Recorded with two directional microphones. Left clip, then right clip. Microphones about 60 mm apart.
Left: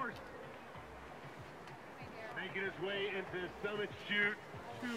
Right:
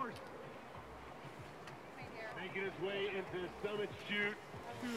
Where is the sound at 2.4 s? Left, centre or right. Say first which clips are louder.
Left 2 dB; left.